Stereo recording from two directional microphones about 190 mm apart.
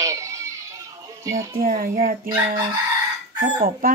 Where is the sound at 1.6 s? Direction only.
50° right (ahead or behind).